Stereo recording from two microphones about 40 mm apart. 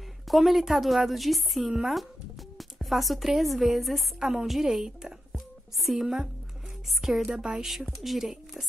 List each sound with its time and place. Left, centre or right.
0.3 s a woman's voice: centre
1.7 s a woman's voice: centre
4.2 s a woman's voice: centre
7.2 s a woman's voice: centre
8.0 s a woman's voice: centre